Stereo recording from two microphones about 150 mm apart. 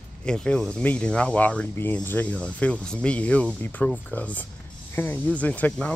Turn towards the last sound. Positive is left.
turn(degrees=10)  # may be behind; listen again after turning